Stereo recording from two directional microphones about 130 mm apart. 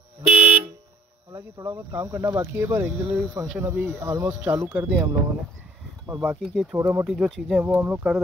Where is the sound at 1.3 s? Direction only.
20° right (ahead or behind).